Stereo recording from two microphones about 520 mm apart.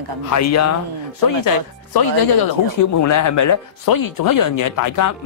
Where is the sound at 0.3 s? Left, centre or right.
Left.